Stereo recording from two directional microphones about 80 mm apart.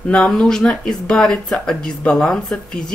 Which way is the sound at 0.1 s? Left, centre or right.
Centre.